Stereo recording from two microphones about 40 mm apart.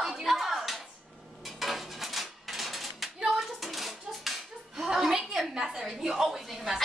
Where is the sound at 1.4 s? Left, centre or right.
Centre.